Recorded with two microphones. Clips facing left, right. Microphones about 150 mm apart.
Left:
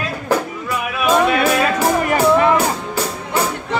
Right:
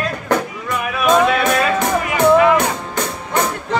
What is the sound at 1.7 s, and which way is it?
Music, 35° left (ahead or behind).